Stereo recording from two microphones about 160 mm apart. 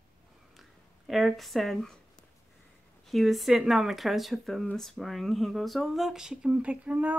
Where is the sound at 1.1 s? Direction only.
Centre (ahead or behind).